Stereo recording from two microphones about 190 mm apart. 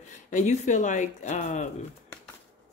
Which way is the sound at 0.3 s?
40° left (ahead or behind).